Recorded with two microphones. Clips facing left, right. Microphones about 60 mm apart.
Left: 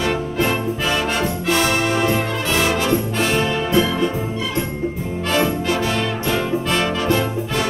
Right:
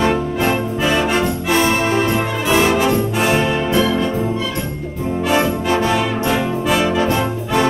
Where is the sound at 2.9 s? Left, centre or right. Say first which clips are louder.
Right 3 dB; centre.